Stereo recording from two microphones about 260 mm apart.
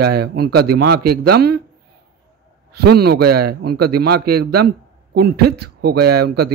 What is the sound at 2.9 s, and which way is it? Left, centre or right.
Speech, right.